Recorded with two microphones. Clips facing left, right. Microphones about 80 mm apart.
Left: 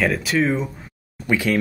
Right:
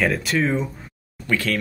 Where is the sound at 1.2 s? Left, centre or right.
Centre.